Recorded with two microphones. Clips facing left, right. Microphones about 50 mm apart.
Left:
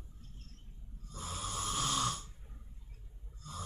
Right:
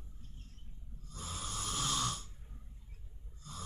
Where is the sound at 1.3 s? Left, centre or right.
Centre.